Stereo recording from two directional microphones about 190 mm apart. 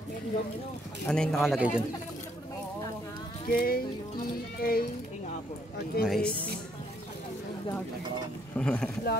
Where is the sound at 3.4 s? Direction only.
50° left (ahead or behind).